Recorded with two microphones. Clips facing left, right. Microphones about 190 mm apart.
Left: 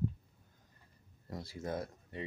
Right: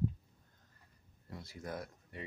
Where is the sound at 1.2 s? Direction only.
35° left (ahead or behind).